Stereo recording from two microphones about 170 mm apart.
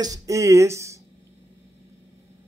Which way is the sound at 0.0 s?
20° right (ahead or behind).